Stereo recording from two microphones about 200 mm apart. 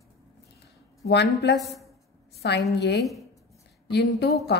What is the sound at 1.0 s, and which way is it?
Speech, 55° left (ahead or behind).